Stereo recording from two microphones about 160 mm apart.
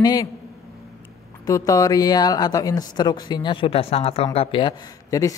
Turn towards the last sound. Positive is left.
turn(degrees=20)  # may be behind; listen again after turning